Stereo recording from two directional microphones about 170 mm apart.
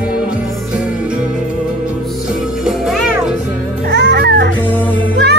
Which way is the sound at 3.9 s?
85° right.